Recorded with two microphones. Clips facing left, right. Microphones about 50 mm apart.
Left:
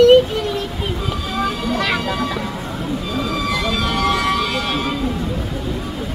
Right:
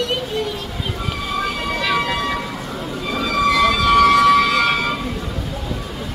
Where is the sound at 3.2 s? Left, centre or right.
Right.